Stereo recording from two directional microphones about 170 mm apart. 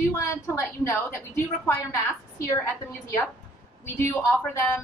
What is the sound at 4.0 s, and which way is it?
Speech, 15° left (ahead or behind).